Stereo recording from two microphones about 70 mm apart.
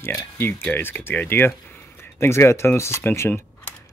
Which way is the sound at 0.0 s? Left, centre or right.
Left.